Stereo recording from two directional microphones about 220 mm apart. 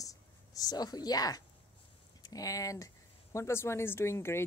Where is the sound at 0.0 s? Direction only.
15° left (ahead or behind).